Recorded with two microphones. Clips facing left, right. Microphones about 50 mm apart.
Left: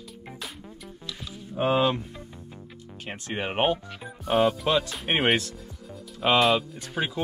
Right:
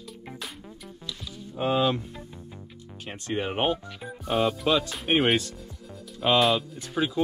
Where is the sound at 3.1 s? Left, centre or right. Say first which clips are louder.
Right 1 dB; left.